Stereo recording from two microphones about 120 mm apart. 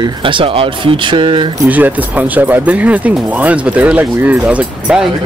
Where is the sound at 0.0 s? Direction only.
45° right (ahead or behind).